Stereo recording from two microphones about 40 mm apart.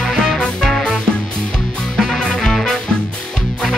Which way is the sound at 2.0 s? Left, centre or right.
Centre.